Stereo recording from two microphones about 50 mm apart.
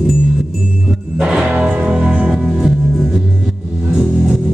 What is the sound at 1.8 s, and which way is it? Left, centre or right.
Music, centre.